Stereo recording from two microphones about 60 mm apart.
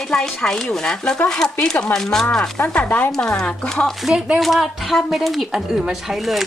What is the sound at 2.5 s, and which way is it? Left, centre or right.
Speech, left.